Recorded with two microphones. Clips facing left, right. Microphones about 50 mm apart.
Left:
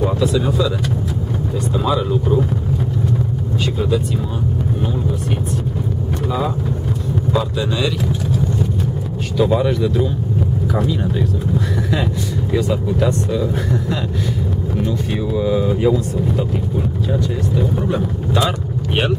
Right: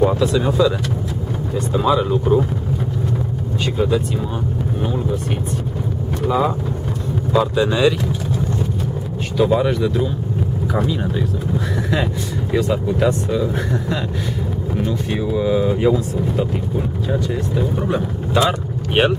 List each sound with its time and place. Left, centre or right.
0.0 s speech: centre
3.7 s speech: centre
6.2 s speech: centre
9.4 s speech: centre
12.5 s speech: centre